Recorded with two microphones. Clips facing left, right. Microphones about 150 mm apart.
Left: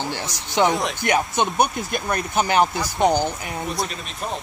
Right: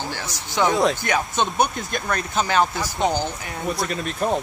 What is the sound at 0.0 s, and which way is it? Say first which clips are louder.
Speech: left 2 dB; 20° left (ahead or behind).